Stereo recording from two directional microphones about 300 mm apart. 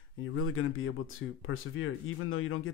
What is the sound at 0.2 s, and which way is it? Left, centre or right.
Speech, left.